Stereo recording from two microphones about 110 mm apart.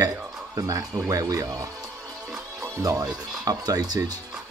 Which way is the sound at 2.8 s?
35° right (ahead or behind).